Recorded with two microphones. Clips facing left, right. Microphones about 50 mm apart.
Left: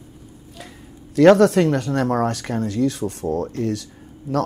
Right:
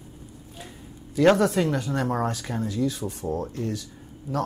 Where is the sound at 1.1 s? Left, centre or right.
Left.